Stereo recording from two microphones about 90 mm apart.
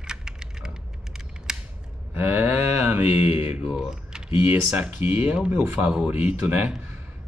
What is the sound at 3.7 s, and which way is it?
Typing, 5° right (ahead or behind).